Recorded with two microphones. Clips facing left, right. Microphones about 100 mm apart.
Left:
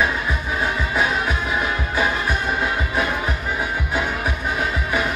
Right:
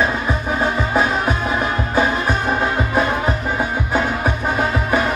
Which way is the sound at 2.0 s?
30° right (ahead or behind).